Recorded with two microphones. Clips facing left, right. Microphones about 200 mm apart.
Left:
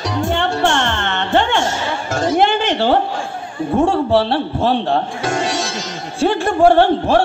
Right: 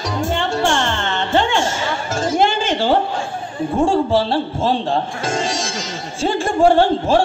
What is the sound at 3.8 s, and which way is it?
A man's voice, 65° left (ahead or behind).